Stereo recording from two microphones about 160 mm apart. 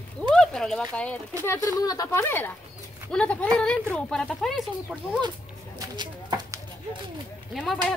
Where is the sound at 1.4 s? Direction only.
15° left (ahead or behind).